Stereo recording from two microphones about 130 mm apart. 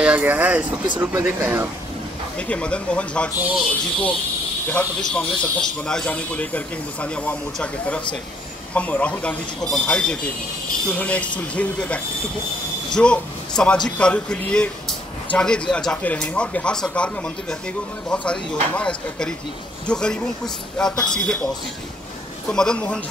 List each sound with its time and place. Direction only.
0.0 s speech: 10° right (ahead or behind)
2.3 s speech: 10° left (ahead or behind)
5.1 s speech: 5° left (ahead or behind)
22.5 s speech: 5° left (ahead or behind)